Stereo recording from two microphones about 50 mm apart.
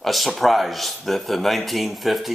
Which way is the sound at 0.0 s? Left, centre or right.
Centre.